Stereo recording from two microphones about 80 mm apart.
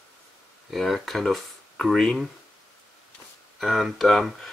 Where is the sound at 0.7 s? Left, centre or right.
Centre.